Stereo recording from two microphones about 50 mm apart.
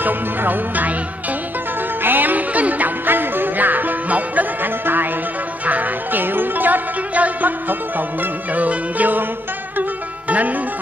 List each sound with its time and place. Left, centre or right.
0.0 s music: right
2.0 s music: right
3.1 s music: right
8.5 s music: right